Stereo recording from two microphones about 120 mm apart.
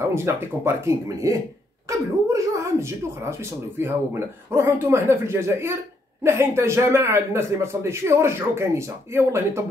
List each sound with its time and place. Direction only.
0.1 s speech: 20° right (ahead or behind)